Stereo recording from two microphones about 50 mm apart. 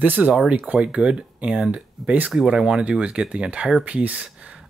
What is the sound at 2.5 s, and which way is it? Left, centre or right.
Speech, centre.